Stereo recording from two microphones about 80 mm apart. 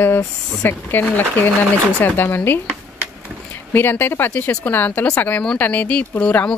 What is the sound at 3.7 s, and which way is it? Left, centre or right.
A woman's voice, left.